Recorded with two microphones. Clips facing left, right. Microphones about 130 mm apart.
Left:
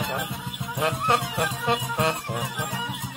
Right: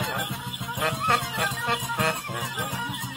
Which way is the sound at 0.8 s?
15° left (ahead or behind).